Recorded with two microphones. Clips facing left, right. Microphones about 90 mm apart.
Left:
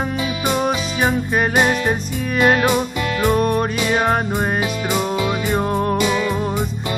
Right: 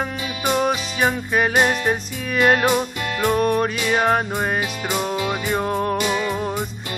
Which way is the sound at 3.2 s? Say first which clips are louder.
Even; 30° left (ahead or behind).